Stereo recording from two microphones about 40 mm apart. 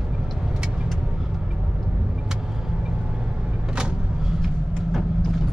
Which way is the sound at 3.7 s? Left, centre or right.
Centre.